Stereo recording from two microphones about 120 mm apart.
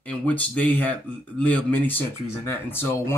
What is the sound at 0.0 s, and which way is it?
Speech, 10° left (ahead or behind).